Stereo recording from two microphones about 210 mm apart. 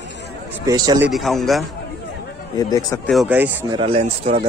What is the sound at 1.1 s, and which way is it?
Speech, centre (ahead or behind).